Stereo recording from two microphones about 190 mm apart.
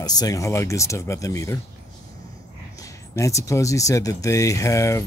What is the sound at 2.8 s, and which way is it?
Speech, 15° left (ahead or behind).